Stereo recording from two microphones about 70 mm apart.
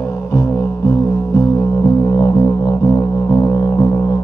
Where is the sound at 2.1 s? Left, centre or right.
Left.